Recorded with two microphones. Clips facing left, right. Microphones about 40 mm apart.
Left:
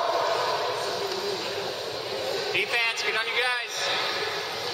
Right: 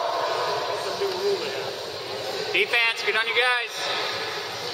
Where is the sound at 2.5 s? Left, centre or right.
Right.